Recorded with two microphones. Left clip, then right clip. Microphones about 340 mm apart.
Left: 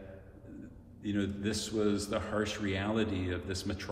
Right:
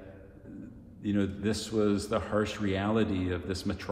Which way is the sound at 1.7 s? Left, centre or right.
Right.